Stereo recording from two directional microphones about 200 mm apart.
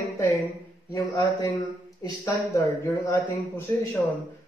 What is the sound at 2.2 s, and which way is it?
A man's voice, 10° left (ahead or behind).